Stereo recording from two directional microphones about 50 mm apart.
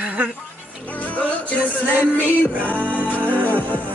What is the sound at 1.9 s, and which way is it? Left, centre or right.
Music, right.